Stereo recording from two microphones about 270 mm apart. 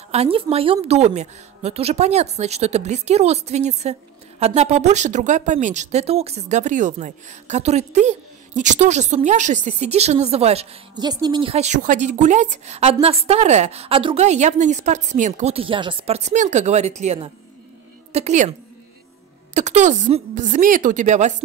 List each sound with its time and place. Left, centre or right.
0.1 s speech: right
19.5 s speech: right